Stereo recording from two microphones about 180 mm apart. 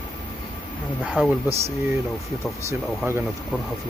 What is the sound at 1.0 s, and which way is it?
Speech, 5° right (ahead or behind).